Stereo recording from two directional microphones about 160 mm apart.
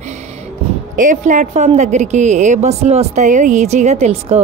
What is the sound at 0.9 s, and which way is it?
A woman's voice, 55° right (ahead or behind).